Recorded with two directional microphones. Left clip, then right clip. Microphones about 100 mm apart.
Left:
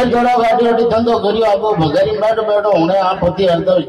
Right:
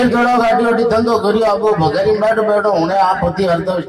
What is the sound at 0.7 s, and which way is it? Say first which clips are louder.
A man's voice: left 1 dB; 20° left (ahead or behind).